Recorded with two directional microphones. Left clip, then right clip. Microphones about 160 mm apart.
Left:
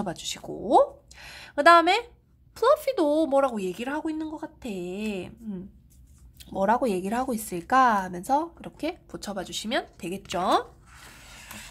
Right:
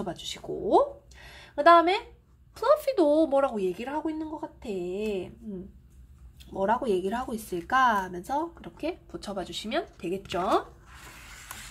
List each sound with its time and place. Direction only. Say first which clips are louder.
0.0 s speech: left 2 dB; 40° left (ahead or behind)
2.5 s a woman's voice: left 2 dB; 15° left (ahead or behind)
6.5 s speech: left 2 dB; 40° left (ahead or behind); by 10.6 s 20° left (ahead or behind)